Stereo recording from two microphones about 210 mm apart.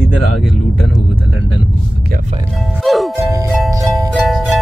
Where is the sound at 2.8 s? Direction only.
Centre (ahead or behind).